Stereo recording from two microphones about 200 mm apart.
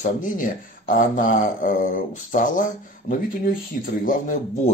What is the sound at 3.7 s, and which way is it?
Speech, 45° left (ahead or behind).